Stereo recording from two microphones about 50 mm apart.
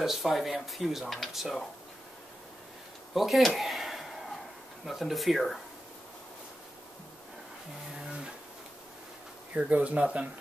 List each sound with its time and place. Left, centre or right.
0.0 s speech: centre
3.2 s a sound: centre
4.8 s speech: centre
9.6 s speech: right